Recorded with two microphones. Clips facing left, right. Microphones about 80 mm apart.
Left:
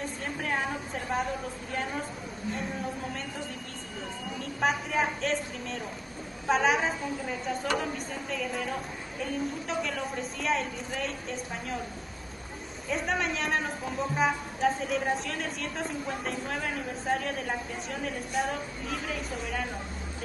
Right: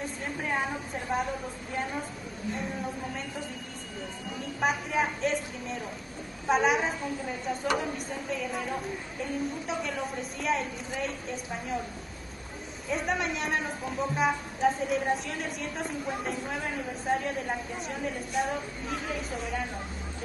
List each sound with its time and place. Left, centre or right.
0.0 s a sound: centre
4.6 s speech: centre
12.8 s speech: centre